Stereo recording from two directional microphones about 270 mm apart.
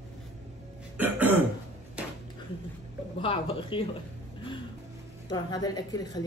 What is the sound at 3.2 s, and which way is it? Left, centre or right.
Speech, centre.